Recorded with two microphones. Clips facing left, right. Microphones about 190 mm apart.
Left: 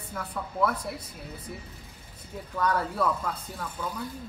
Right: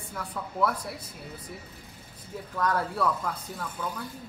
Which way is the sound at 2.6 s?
Centre (ahead or behind).